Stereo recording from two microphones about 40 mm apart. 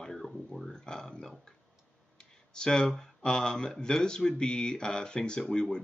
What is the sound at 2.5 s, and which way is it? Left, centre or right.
Speech, left.